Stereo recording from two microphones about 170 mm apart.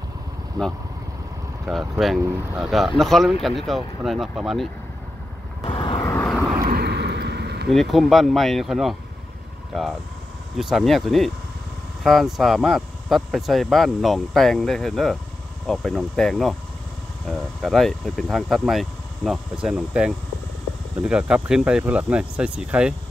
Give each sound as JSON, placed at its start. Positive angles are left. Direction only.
{"t": 1.7, "sound": "speech", "side_deg": 0}
{"t": 5.6, "sound": "vehicle", "side_deg": 30}
{"t": 5.9, "sound": "vehicle", "side_deg": 15}
{"t": 6.7, "sound": "a sound", "side_deg": -75}
{"t": 7.7, "sound": "speech", "side_deg": 0}
{"t": 10.6, "sound": "speech", "side_deg": 0}